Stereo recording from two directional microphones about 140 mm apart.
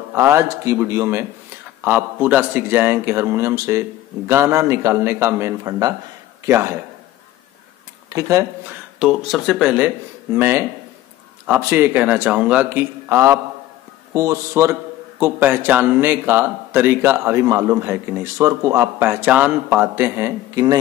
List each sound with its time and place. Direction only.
0.1 s a man's voice: 20° right (ahead or behind)
8.1 s a man's voice: 25° right (ahead or behind)
9.0 s a man's voice: 5° right (ahead or behind)